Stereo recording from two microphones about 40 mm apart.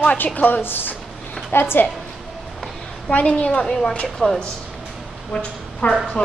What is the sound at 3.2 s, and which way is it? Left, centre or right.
A woman's voice, left.